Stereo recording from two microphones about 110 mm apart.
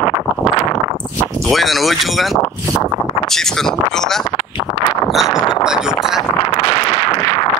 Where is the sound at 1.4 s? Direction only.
Centre (ahead or behind).